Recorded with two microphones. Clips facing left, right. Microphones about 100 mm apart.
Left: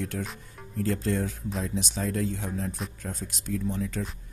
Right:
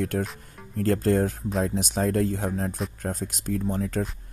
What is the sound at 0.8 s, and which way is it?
Speech, 55° right (ahead or behind).